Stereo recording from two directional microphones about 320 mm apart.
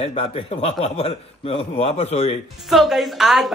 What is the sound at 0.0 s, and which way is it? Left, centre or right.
A man's voice, centre.